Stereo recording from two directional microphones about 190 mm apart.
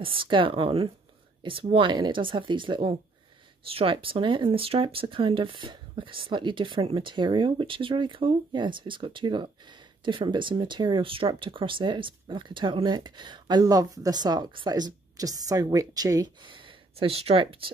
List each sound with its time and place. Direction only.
0.0 s speech: 25° right (ahead or behind)